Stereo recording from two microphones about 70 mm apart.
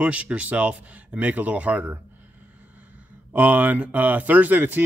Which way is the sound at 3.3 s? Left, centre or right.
Right.